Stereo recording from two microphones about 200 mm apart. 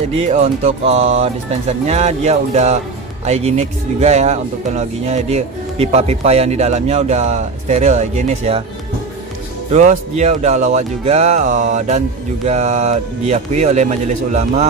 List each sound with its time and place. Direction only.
0.1 s speech: 35° right (ahead or behind)
9.7 s speech: 35° right (ahead or behind)